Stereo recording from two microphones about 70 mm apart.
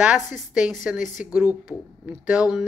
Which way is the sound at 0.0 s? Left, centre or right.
Centre.